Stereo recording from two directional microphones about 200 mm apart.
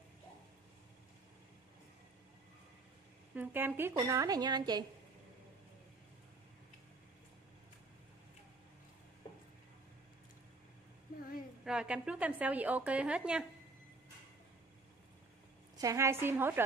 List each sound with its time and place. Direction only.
3.3 s a woman's voice: 10° right (ahead or behind)
11.6 s a woman's voice: 5° right (ahead or behind)
15.8 s a woman's voice: 15° right (ahead or behind)